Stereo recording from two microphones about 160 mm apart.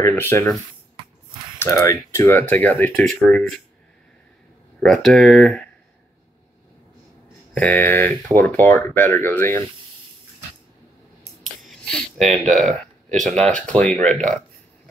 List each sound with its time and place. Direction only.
0.0 s speech: 15° left (ahead or behind)
1.6 s speech: 15° left (ahead or behind)
4.7 s speech: centre (ahead or behind)
7.5 s speech: 10° left (ahead or behind)
8.3 s speech: 20° right (ahead or behind)
8.6 s speech: 10° left (ahead or behind)
11.4 s speech: centre (ahead or behind)